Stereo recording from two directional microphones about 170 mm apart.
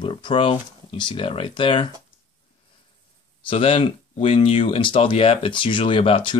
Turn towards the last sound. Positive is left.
turn(degrees=30)  # may be behind; listen again after turning